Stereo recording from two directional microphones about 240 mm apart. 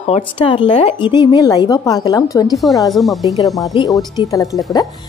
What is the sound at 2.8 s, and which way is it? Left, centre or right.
Speech, centre.